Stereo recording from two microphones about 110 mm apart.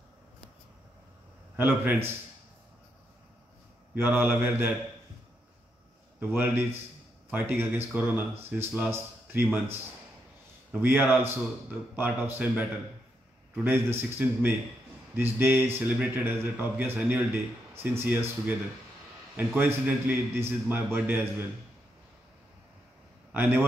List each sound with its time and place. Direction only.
1.6 s a man's voice: 20° right (ahead or behind)
3.9 s a man's voice: 20° right (ahead or behind)
6.1 s a man's voice: 15° right (ahead or behind)
10.7 s speech: 15° right (ahead or behind)
13.7 s a man's voice: 20° right (ahead or behind)
23.3 s a man's voice: 20° right (ahead or behind)